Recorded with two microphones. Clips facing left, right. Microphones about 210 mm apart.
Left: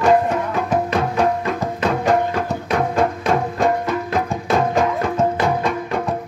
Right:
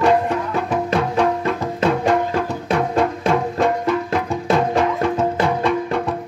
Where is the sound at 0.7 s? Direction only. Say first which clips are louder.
Even; 40° left (ahead or behind).